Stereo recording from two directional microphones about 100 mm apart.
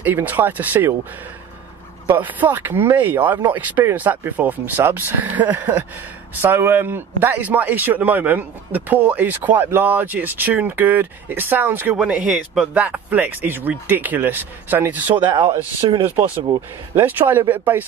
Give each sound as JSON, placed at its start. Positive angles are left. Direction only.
{"t": 0.0, "sound": "a man's voice", "side_deg": -20}
{"t": 2.1, "sound": "a man's voice", "side_deg": -20}
{"t": 15.8, "sound": "speech", "side_deg": -50}
{"t": 16.9, "sound": "speech", "side_deg": -20}